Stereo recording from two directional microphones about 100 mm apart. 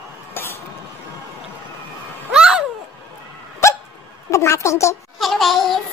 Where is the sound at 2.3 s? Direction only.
5° right (ahead or behind).